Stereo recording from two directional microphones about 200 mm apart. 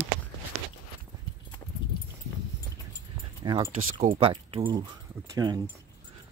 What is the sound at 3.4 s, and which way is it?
Speech, 20° right (ahead or behind).